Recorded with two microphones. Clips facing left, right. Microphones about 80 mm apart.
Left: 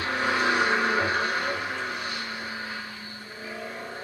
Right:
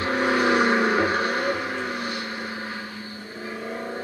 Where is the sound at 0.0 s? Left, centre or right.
Right.